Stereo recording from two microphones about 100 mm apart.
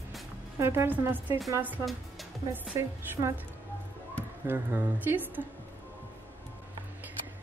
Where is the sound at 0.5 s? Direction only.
25° right (ahead or behind).